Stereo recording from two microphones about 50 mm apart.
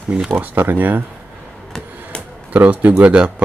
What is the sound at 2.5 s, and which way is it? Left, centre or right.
Speech, right.